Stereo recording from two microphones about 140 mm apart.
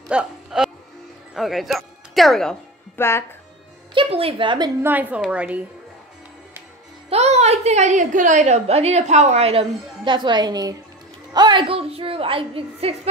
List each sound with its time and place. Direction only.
0.1 s a woman's voice: 5° right (ahead or behind)
3.0 s speech: 15° left (ahead or behind)
3.9 s a woman's voice: 40° right (ahead or behind)
4.8 s a woman's voice: 10° right (ahead or behind)
7.1 s a woman's voice: 50° right (ahead or behind)